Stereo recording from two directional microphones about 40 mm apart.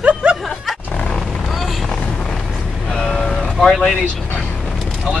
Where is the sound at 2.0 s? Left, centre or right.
Centre.